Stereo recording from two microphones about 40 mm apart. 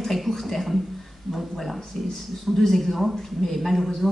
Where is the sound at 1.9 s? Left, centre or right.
Centre.